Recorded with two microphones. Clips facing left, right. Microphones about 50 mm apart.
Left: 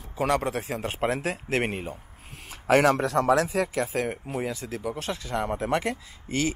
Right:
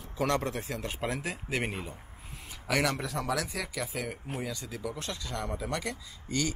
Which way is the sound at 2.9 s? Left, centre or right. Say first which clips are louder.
Left 10 dB; left.